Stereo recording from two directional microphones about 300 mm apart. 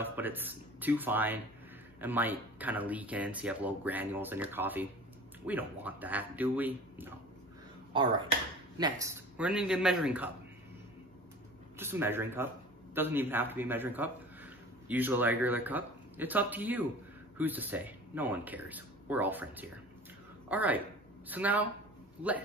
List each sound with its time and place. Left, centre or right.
0.0 s speech: centre
7.9 s speech: centre
11.8 s a man's voice: centre